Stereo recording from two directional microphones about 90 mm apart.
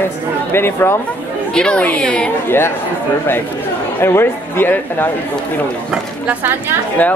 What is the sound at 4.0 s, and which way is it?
Speech, 25° left (ahead or behind).